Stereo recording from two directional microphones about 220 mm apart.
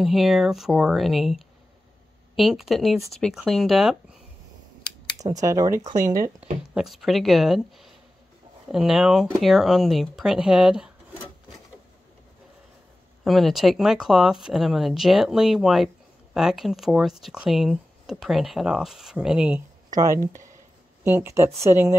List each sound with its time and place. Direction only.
0.0 s speech: centre (ahead or behind)
5.4 s speech: 15° right (ahead or behind)
6.7 s speech: centre (ahead or behind)
13.2 s speech: centre (ahead or behind)
19.9 s speech: 15° right (ahead or behind)